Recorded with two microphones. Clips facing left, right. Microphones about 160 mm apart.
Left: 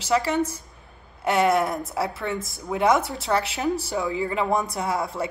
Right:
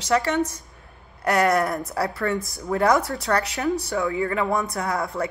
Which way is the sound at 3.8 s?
25° left (ahead or behind).